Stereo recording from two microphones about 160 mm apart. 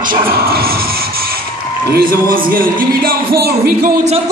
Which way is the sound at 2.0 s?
60° right (ahead or behind).